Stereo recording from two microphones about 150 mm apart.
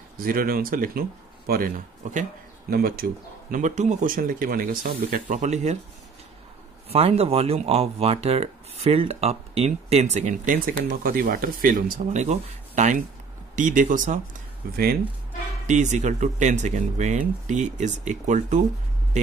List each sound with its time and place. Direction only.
0.2 s speech: 70° right (ahead or behind)
1.5 s speech: 85° right
2.0 s speech: 55° right (ahead or behind)
2.7 s speech: 80° right
3.5 s speech: 55° right (ahead or behind)
6.9 s speech: 40° right (ahead or behind); by 14.2 s 60° right (ahead or behind)
15.6 s speech: 55° right (ahead or behind)